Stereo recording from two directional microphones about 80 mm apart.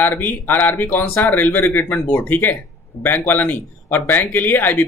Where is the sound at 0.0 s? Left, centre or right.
Left.